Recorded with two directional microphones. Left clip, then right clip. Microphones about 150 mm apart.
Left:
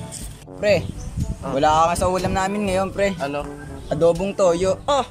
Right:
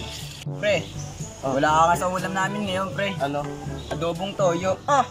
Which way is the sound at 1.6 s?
25° left (ahead or behind).